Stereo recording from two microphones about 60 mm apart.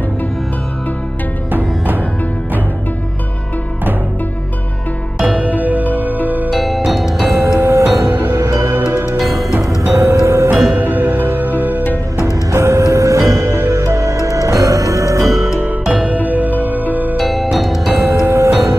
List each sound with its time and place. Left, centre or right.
1.5 s music: right
5.2 s music: right
6.5 s music: centre
7.4 s music: right
8.4 s music: right
10.7 s music: right
12.4 s music: right
15.3 s music: centre
15.9 s music: right
17.2 s music: centre
18.2 s music: right